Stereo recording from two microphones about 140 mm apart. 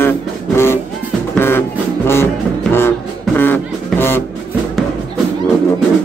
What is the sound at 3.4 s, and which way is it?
Music, 15° left (ahead or behind).